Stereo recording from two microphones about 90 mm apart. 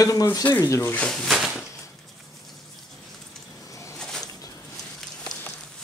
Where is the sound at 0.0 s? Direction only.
40° left (ahead or behind).